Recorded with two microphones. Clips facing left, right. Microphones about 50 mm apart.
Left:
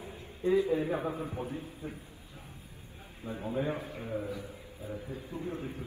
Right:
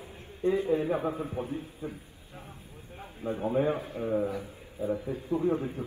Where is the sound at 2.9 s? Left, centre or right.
Right.